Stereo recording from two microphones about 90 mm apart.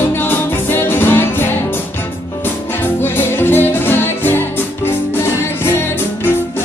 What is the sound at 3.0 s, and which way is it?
Music, 25° left (ahead or behind).